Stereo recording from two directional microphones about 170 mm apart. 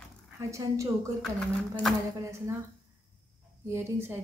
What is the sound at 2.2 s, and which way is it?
Speech, 15° right (ahead or behind).